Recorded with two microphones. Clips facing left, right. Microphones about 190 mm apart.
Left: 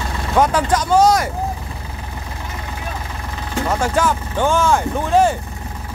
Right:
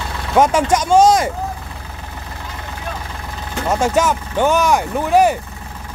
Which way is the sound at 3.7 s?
20° right (ahead or behind).